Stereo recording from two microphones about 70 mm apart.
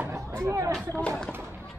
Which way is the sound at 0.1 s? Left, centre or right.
Right.